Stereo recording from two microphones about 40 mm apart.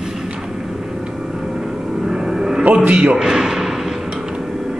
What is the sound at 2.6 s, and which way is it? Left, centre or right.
Speech, right.